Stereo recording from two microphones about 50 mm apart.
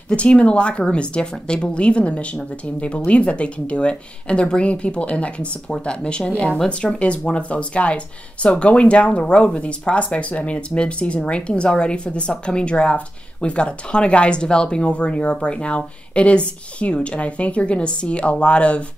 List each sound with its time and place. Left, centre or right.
0.1 s speech: left